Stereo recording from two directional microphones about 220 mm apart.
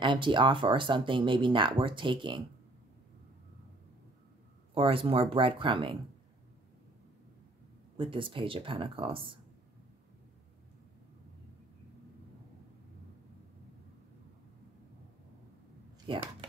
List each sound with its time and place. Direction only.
0.0 s speech: 20° right (ahead or behind)
4.7 s speech: 25° right (ahead or behind)
8.0 s speech: 25° right (ahead or behind)
16.1 s speech: 20° right (ahead or behind)